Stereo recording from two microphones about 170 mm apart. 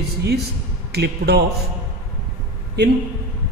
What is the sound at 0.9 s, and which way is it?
Speech, 75° right (ahead or behind).